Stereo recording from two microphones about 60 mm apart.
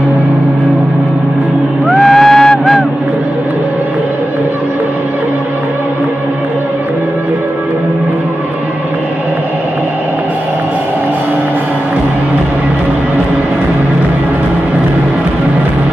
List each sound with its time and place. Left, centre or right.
2.0 s music: centre